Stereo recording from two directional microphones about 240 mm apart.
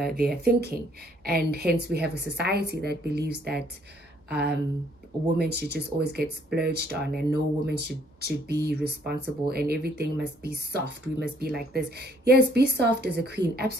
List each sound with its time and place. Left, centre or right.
0.0 s a woman's voice: right